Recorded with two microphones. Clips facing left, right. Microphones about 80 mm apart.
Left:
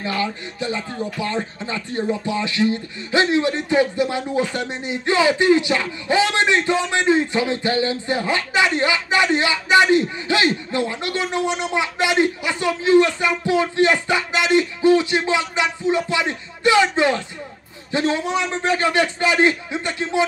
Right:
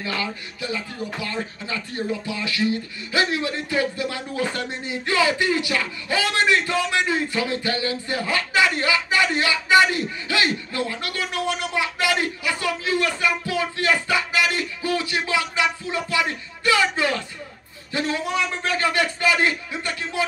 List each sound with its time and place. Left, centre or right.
0.0 s speech: left